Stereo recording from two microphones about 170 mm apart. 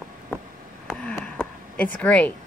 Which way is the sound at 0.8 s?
5° left (ahead or behind).